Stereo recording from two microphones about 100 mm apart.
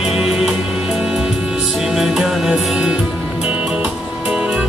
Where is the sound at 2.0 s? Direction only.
5° right (ahead or behind).